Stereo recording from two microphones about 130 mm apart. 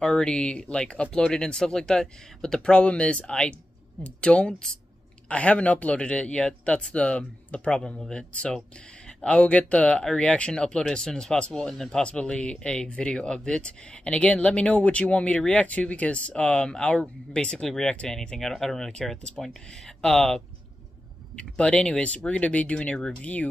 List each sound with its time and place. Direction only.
0.0 s speech: 5° left (ahead or behind)